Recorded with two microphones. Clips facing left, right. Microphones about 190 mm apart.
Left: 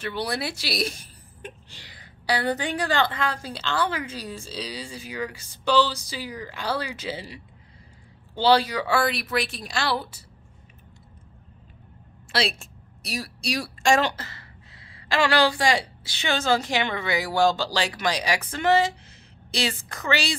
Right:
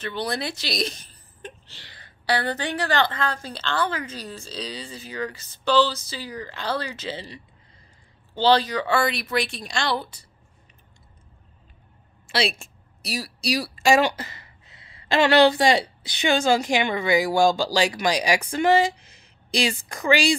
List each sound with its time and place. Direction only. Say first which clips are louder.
0.0 s a woman's voice: right 1 dB; 10° left (ahead or behind)
12.3 s a woman's voice: right 2 dB; centre (ahead or behind)